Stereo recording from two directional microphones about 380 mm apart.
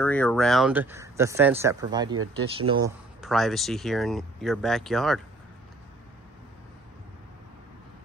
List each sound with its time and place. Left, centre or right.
0.0 s speech: centre
3.2 s speech: centre